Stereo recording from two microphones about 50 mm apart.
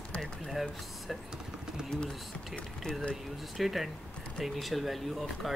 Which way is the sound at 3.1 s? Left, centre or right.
Centre.